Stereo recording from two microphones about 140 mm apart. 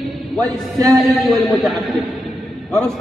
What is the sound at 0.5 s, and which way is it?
Music, 25° right (ahead or behind).